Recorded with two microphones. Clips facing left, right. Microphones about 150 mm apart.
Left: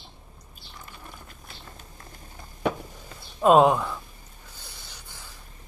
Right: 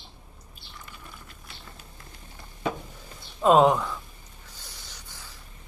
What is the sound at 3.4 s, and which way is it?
Speech, 15° left (ahead or behind).